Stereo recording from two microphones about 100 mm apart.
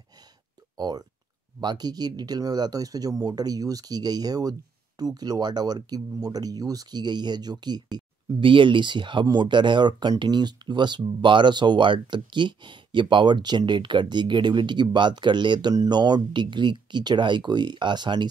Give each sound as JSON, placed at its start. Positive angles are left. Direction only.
{"t": 0.7, "sound": "speech", "side_deg": -45}